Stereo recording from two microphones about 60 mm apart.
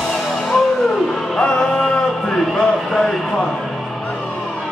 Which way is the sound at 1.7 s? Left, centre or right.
Centre.